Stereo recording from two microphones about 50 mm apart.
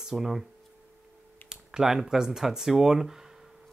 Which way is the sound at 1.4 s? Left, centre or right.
Centre.